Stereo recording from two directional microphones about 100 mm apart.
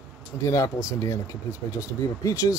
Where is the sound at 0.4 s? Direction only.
30° left (ahead or behind).